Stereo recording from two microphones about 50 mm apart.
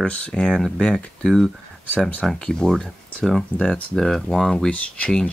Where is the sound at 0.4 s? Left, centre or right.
Centre.